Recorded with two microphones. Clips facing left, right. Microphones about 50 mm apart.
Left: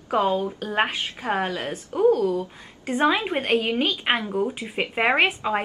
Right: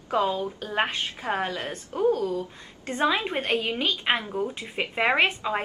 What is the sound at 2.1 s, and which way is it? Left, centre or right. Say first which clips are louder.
Speech: left 4 dB; left.